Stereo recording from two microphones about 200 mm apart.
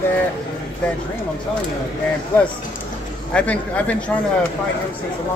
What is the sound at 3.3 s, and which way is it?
Speech, 5° left (ahead or behind).